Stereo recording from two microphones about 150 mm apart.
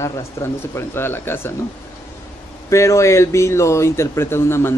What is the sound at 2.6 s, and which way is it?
Speech, 20° left (ahead or behind).